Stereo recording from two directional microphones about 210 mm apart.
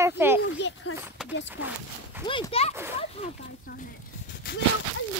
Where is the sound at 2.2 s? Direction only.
25° left (ahead or behind).